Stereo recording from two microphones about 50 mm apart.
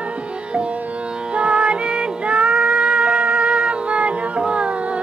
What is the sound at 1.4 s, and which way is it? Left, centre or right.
Music, centre.